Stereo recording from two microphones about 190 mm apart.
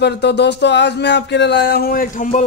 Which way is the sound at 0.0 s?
60° left (ahead or behind).